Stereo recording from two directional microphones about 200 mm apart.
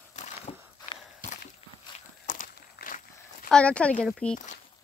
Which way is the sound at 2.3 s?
40° left (ahead or behind).